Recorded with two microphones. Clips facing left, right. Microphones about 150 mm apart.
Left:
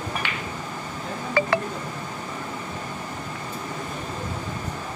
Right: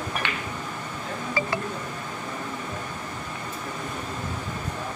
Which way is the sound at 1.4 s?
60° left (ahead or behind).